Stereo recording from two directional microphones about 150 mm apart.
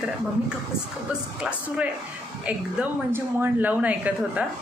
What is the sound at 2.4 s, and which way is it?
A man's voice, 10° right (ahead or behind).